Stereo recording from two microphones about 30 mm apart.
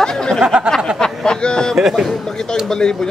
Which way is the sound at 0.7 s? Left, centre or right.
Left.